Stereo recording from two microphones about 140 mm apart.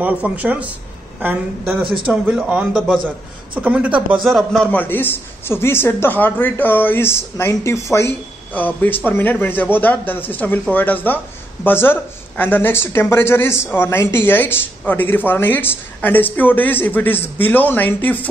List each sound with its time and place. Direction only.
0.0 s speech: 10° right (ahead or behind)
4.2 s speech: centre (ahead or behind)
4.7 s speech: 15° left (ahead or behind)